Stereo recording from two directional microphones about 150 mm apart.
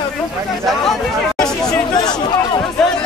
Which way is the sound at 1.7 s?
30° left (ahead or behind).